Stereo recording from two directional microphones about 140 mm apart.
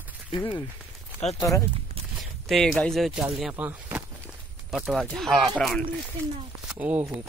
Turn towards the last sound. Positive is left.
turn(degrees=-10)  # may be behind; listen again after turning